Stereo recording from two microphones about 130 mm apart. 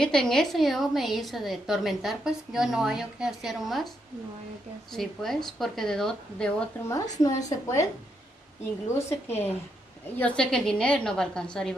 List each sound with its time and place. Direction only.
0.0 s a woman's voice: 5° left (ahead or behind)
4.9 s a woman's voice: 5° left (ahead or behind)
7.2 s a woman's voice: 25° left (ahead or behind)
8.9 s a woman's voice: 20° left (ahead or behind)
10.1 s a woman's voice: 10° left (ahead or behind)